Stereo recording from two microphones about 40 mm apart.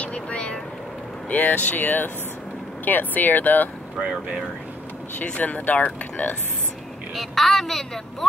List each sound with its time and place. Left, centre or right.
0.0 s speech: left
1.3 s speech: left
5.4 s speech: left
7.2 s a woman's voice: centre